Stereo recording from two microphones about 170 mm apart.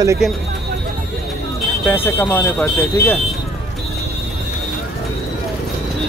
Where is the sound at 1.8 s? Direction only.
10° left (ahead or behind).